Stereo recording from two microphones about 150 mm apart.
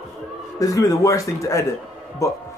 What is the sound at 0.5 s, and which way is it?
Speech, 25° left (ahead or behind).